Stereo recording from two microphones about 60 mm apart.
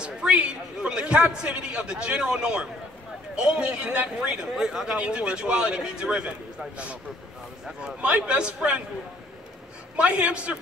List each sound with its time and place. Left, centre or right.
0.0 s speech: centre
9.9 s a man's voice: centre